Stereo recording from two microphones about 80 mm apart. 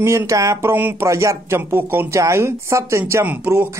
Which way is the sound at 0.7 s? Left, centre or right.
Right.